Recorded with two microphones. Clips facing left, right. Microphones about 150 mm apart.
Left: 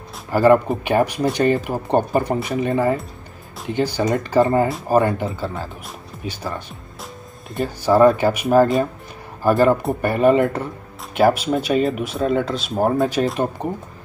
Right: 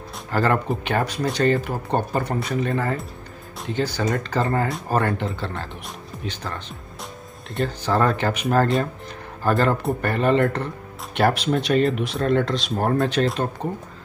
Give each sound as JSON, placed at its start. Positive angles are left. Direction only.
{"t": 0.1, "sound": "speech", "side_deg": 10}
{"t": 4.6, "sound": "speech", "side_deg": 5}